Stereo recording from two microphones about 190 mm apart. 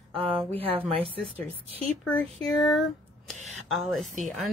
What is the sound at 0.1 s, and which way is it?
Speech, 25° right (ahead or behind).